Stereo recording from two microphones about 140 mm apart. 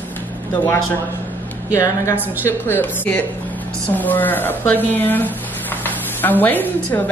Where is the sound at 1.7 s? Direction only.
20° left (ahead or behind).